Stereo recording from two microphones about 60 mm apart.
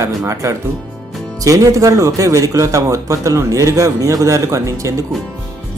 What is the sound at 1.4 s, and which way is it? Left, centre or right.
Speech, right.